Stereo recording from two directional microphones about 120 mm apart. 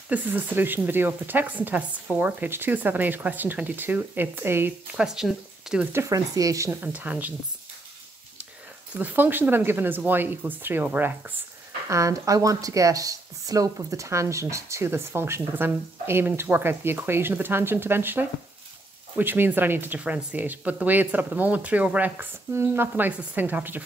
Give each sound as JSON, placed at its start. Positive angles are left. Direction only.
{"t": 0.1, "sound": "speech", "side_deg": -15}
{"t": 4.9, "sound": "speech", "side_deg": -5}
{"t": 5.9, "sound": "speech", "side_deg": -30}
{"t": 6.7, "sound": "speech", "side_deg": -15}
{"t": 8.9, "sound": "speech", "side_deg": -15}
{"t": 11.9, "sound": "speech", "side_deg": -25}